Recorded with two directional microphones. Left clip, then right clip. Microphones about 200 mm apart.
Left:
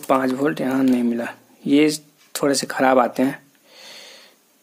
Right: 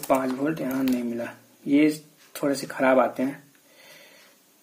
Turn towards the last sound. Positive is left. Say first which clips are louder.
# left 4 dB
turn(degrees=50)  # may be behind; listen again after turning